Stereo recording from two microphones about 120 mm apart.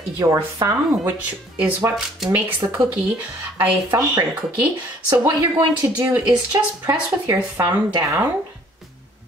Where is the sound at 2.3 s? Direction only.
10° right (ahead or behind).